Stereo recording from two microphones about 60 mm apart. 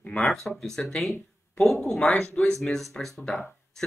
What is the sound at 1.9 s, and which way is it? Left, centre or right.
Speech, centre.